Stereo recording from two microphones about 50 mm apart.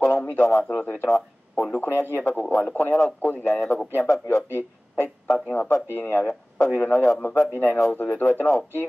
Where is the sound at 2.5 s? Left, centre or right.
Left.